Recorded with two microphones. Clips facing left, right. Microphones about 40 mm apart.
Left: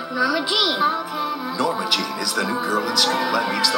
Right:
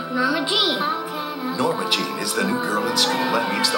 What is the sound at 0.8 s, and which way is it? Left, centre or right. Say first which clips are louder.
Speech: left 3 dB; centre.